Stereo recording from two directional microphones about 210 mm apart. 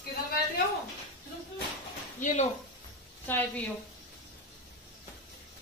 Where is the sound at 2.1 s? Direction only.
35° left (ahead or behind).